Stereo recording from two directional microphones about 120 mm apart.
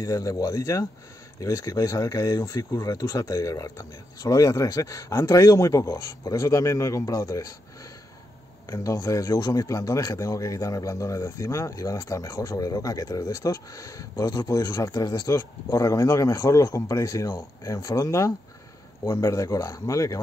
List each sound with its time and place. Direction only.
0.0 s a man's voice: 30° left (ahead or behind)
8.6 s a man's voice: 30° left (ahead or behind)